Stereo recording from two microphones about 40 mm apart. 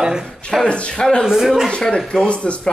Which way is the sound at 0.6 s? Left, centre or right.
Left.